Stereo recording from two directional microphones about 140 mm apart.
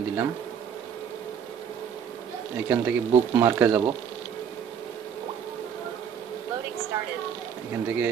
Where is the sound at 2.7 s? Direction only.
15° right (ahead or behind).